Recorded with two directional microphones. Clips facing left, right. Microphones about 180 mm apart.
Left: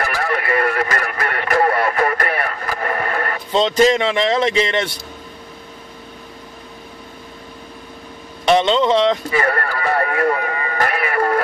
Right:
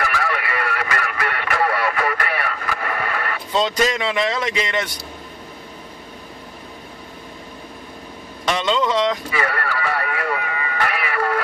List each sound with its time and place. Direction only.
0.0 s radio: 40° left (ahead or behind)
3.5 s speech: 30° left (ahead or behind)
8.5 s speech: 30° left (ahead or behind)
9.3 s a sound: 45° left (ahead or behind)